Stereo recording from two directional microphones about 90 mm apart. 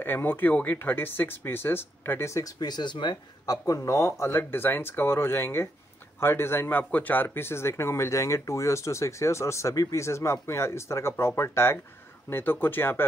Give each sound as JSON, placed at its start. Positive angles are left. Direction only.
{"t": 0.0, "sound": "speech", "side_deg": 20}
{"t": 2.6, "sound": "speech", "side_deg": 55}